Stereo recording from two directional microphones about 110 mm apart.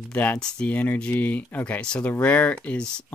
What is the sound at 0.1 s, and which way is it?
Speech, 10° left (ahead or behind).